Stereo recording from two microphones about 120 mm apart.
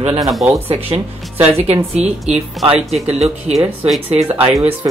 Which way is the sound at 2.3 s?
60° right (ahead or behind).